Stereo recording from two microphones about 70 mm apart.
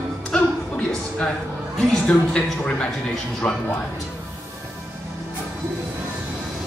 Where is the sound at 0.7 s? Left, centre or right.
Centre.